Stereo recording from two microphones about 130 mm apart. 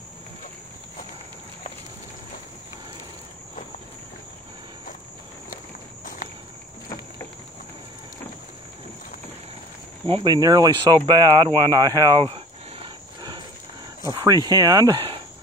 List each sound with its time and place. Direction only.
10.0 s speech: 40° right (ahead or behind)
12.3 s cricket: 45° right (ahead or behind)
14.1 s speech: 30° right (ahead or behind)